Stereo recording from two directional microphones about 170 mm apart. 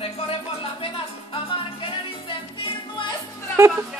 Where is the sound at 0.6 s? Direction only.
35° left (ahead or behind).